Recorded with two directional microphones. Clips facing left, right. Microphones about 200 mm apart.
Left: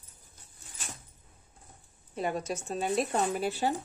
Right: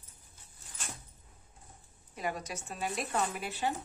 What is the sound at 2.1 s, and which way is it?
A woman's voice, 30° left (ahead or behind).